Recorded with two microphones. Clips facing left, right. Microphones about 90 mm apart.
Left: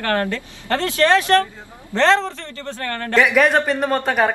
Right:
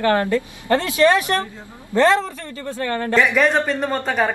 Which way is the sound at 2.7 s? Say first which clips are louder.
Right 2 dB; 15° right (ahead or behind).